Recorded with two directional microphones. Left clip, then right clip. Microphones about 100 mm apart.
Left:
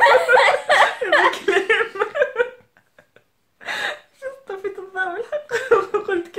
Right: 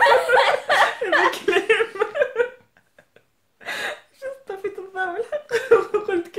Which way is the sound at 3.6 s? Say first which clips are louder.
Left 3 dB; 35° right (ahead or behind).